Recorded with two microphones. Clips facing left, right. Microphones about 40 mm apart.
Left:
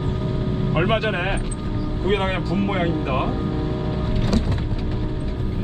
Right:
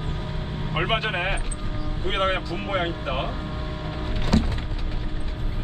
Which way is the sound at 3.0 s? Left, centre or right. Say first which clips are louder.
Left 5 dB; centre.